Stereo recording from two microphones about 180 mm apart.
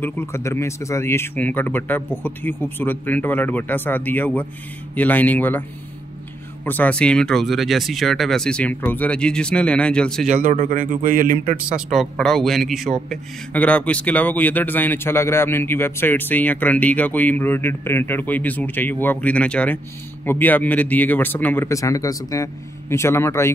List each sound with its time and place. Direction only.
0.0 s a man's voice: 15° left (ahead or behind)
6.6 s speech: 10° left (ahead or behind)
10.2 s speech: 45° right (ahead or behind)
11.7 s a man's voice: centre (ahead or behind)